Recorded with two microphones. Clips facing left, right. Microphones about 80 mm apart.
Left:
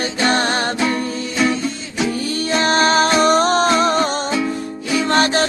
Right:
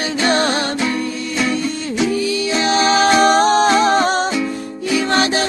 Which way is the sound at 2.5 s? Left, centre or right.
Left.